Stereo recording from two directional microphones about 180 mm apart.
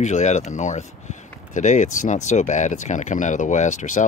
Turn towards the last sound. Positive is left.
turn(degrees=45)  # may be behind; listen again after turning